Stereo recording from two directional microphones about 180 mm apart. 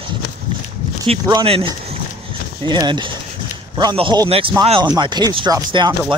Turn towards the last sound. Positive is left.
turn(degrees=-25)  # may be behind; listen again after turning